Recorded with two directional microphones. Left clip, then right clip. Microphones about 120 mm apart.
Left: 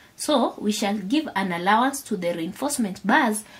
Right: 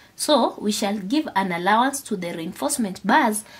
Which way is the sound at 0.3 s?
25° right (ahead or behind).